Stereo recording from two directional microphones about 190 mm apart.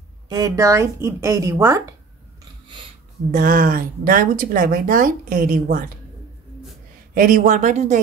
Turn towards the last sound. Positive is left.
turn(degrees=-40)  # may be behind; listen again after turning